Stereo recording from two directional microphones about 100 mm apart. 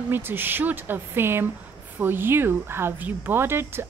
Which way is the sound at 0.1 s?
20° right (ahead or behind).